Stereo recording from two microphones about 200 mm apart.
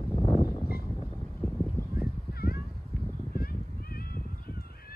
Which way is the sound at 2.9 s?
50° right (ahead or behind).